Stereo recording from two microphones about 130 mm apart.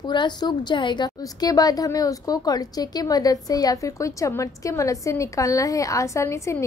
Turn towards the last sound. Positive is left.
turn(degrees=20)  # may be behind; listen again after turning